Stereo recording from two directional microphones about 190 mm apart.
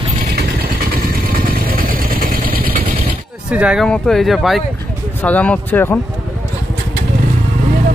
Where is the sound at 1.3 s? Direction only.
50° right (ahead or behind).